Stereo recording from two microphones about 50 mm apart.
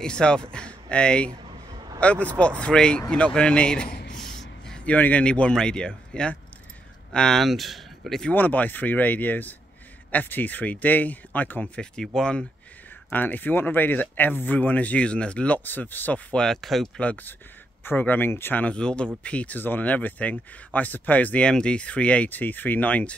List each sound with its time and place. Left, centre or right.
0.0 s speech: centre
4.2 s a sound: centre
4.8 s speech: left; by 7.4 s centre
7.4 s speech: centre
8.3 s speech: left
11.7 s speech: centre
13.1 s speech: left
16.6 s speech: centre
17.8 s speech: left
18.8 s speech: centre
21.5 s speech: centre